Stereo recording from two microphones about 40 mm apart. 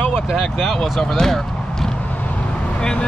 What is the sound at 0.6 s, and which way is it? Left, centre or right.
Speech, centre.